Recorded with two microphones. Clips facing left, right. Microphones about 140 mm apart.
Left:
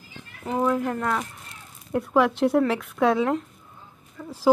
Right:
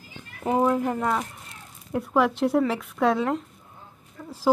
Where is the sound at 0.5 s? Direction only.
20° right (ahead or behind).